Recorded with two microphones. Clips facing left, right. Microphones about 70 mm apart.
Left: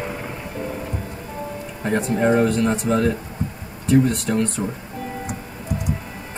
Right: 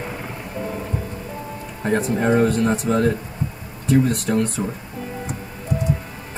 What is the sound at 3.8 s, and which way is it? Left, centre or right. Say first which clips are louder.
Speech: left 1 dB; right.